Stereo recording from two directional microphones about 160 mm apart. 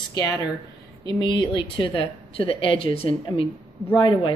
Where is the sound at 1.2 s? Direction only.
30° left (ahead or behind).